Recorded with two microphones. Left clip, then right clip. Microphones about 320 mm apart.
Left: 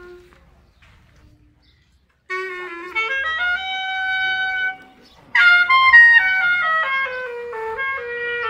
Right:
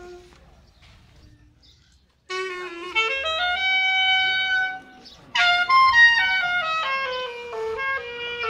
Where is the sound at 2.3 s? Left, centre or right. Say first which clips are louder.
Left 3 dB; centre.